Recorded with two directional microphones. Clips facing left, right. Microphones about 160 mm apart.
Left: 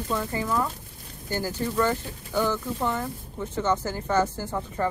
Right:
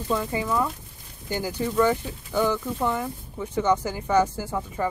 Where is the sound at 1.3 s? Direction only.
15° right (ahead or behind).